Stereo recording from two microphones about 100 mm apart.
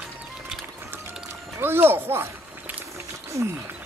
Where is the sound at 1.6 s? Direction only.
25° right (ahead or behind).